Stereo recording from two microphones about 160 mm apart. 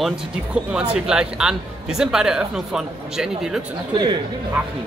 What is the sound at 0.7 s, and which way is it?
Speech, 5° right (ahead or behind).